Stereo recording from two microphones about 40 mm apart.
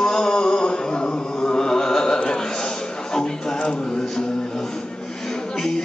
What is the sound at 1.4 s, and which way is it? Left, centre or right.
Chant, centre.